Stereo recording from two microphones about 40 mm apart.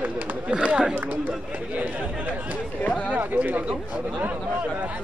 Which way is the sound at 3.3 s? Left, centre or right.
Right.